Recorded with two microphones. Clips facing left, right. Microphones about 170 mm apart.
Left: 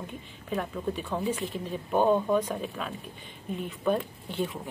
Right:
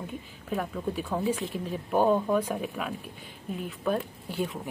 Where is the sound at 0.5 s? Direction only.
5° right (ahead or behind).